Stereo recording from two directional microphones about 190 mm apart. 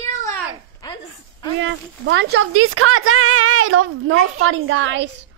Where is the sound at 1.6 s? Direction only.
75° right (ahead or behind).